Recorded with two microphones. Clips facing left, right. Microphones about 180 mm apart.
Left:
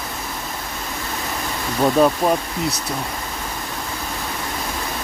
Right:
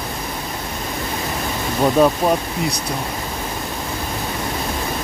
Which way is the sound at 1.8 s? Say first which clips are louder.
Right 1 dB; centre (ahead or behind).